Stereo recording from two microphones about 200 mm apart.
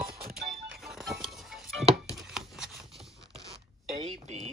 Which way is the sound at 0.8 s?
Centre (ahead or behind).